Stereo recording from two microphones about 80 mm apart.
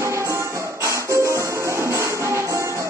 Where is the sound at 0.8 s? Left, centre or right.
Right.